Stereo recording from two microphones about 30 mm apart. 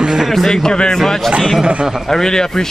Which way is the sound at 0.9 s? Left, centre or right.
Centre.